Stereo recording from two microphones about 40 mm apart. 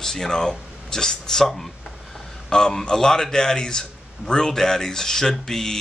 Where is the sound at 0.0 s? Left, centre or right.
Centre.